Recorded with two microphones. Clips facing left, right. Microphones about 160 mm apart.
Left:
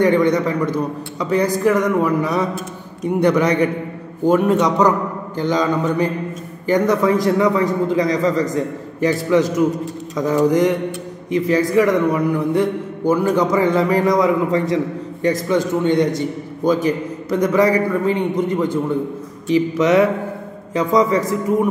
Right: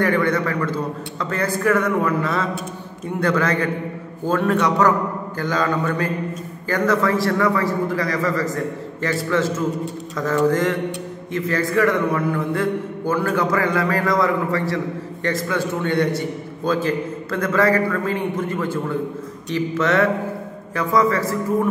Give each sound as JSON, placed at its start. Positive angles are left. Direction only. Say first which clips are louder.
{"t": 0.0, "sound": "a man's voice", "louder": "left 4 dB", "side_deg": 15}